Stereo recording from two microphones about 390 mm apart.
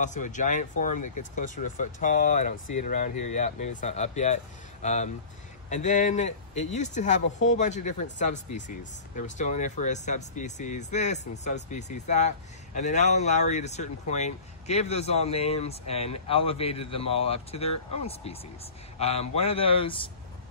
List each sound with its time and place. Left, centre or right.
0.0 s speech: centre
0.9 s speech: left
1.3 s a man's voice: centre